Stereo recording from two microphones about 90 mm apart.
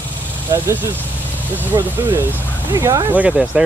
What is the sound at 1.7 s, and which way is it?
Speech, 50° right (ahead or behind).